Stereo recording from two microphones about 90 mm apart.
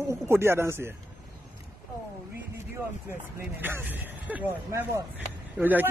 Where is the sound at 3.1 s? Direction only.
25° right (ahead or behind).